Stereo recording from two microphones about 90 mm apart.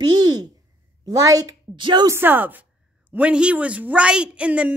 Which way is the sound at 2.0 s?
25° right (ahead or behind).